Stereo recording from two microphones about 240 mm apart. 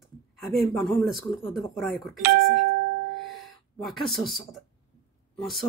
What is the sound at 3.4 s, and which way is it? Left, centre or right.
Speech, centre.